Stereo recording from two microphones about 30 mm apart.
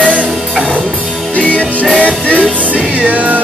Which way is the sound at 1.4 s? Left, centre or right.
Left.